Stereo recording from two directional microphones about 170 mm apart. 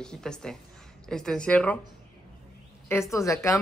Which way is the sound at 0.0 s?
5° left (ahead or behind).